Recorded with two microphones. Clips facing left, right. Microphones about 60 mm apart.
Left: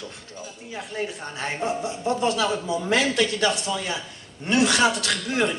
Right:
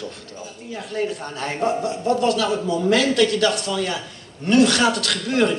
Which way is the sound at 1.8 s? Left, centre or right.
Centre.